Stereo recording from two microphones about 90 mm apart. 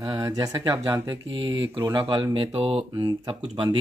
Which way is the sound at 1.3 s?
60° right (ahead or behind).